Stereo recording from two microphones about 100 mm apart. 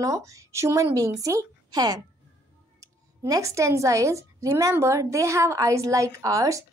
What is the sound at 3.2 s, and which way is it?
A woman's voice, 30° right (ahead or behind).